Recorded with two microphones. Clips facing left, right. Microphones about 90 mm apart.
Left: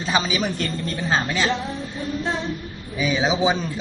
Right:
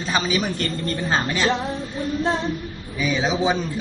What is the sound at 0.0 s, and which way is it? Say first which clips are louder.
A man's voice: even; 5° left (ahead or behind).